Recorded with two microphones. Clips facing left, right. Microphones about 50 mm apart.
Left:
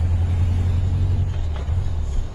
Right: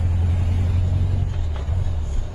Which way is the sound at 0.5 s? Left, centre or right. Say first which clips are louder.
Even; right.